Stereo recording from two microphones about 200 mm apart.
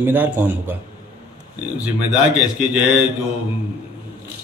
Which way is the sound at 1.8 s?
5° right (ahead or behind).